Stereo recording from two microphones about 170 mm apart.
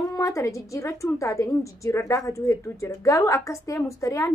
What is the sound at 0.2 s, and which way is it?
A woman's voice, 15° left (ahead or behind).